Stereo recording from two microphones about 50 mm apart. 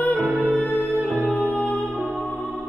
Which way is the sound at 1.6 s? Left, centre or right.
Left.